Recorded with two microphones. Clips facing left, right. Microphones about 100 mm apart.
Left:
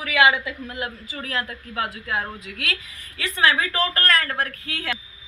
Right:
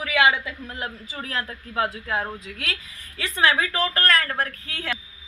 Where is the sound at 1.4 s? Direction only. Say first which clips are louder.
Right 3 dB; 25° right (ahead or behind).